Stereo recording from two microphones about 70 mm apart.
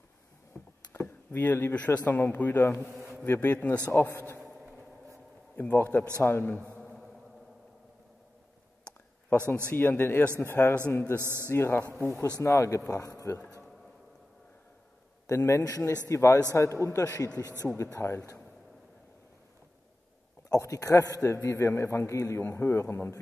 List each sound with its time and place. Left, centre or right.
0.5 s a sound: left
2.0 s a man's voice: left
4.4 s a sound: centre
5.6 s a man's voice: left
6.8 s music: centre
9.3 s a man's voice: left
11.1 s a man's voice: right
11.5 s a man's voice: left
15.2 s a man's voice: left
17.9 s a man's voice: left
20.4 s a man's voice: left
22.1 s a man's voice: left
22.4 s a man's voice: left